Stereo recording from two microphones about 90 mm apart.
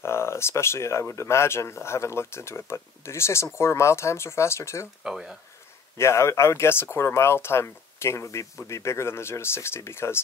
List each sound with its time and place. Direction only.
0.0 s speech: 30° left (ahead or behind)
5.0 s speech: 5° right (ahead or behind)
5.9 s speech: 30° left (ahead or behind)